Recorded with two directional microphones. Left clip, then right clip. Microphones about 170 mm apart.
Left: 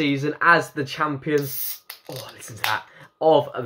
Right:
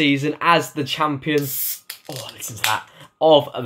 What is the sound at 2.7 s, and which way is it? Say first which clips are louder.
Speech: right 3 dB; centre (ahead or behind).